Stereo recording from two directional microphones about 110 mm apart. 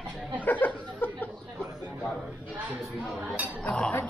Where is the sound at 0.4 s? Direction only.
15° left (ahead or behind).